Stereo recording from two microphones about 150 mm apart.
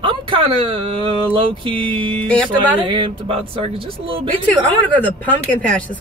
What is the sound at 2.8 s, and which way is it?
Speech, 35° right (ahead or behind).